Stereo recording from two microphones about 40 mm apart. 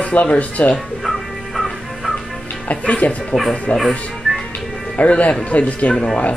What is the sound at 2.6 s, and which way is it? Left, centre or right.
Speech, left.